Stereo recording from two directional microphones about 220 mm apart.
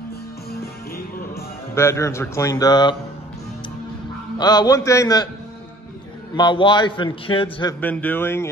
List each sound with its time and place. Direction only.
1.3 s speech: 10° left (ahead or behind)
4.4 s a man's voice: 20° left (ahead or behind)
6.3 s a man's voice: 20° left (ahead or behind)
7.8 s a man's voice: 5° left (ahead or behind)